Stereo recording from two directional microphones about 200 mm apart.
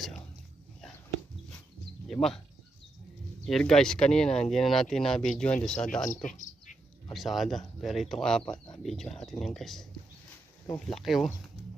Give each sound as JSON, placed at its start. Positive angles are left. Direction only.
{"t": 2.0, "sound": "speech", "side_deg": 0}
{"t": 3.4, "sound": "speech", "side_deg": 0}
{"t": 6.0, "sound": "speech", "side_deg": 40}
{"t": 7.2, "sound": "speech", "side_deg": 0}
{"t": 11.0, "sound": "speech", "side_deg": 0}